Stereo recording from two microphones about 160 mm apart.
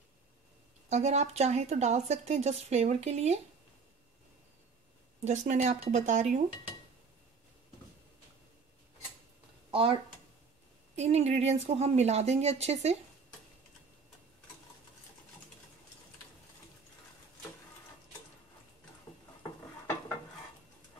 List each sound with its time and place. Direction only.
0.8 s speech: 45° right (ahead or behind)
5.2 s speech: 45° right (ahead or behind)
9.7 s a sound: 35° right (ahead or behind)
11.0 s speech: 40° right (ahead or behind)